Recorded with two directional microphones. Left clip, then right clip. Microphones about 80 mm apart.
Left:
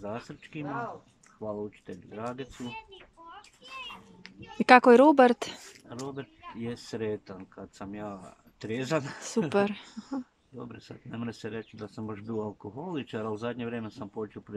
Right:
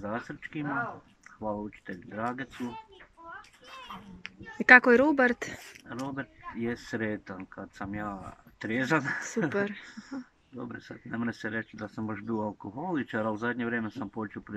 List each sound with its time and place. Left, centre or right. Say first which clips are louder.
0.0 s speech: right 3 dB; left
0.6 s speech: right 3 dB; left
1.9 s speech: right 3 dB; left
4.4 s speech: right 1 dB; left